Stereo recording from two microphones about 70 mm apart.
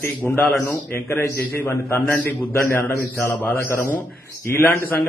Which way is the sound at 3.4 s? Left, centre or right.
Left.